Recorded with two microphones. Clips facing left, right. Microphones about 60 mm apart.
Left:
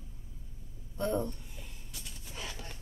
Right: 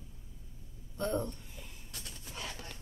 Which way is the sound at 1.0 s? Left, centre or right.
Centre.